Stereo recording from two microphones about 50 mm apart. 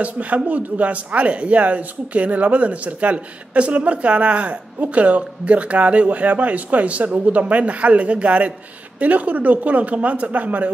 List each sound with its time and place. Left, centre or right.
0.0 s speech: right